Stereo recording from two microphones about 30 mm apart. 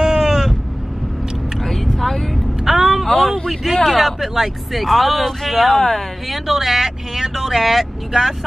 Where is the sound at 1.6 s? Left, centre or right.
Centre.